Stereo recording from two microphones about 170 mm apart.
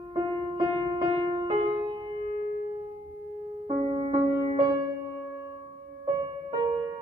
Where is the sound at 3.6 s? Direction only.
35° right (ahead or behind).